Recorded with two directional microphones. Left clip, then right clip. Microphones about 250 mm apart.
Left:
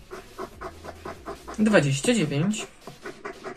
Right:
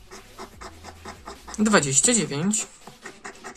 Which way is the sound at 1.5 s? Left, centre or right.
Right.